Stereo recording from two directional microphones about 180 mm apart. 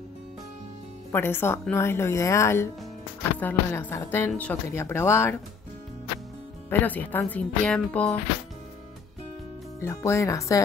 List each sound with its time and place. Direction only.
1.1 s speech: 10° left (ahead or behind)
6.7 s speech: 10° left (ahead or behind)
9.8 s speech: 15° left (ahead or behind)